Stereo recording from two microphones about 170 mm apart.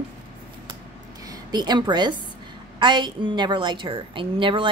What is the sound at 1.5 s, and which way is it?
A woman's voice, 25° right (ahead or behind).